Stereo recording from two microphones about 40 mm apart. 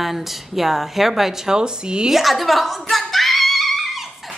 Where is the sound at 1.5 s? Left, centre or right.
Right.